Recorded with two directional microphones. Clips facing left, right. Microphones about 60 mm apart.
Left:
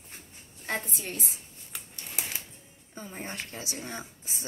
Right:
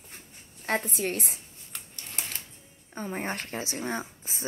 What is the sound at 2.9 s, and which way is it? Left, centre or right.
A woman's voice, right.